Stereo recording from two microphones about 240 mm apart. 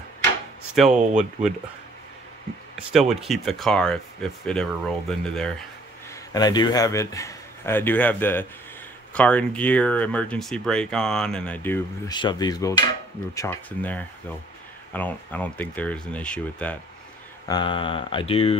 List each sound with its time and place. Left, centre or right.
0.7 s speech: centre
2.7 s speech: centre
6.3 s a man's voice: centre
17.5 s mantra: centre